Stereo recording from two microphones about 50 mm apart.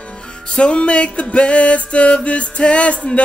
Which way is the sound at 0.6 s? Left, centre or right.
Left.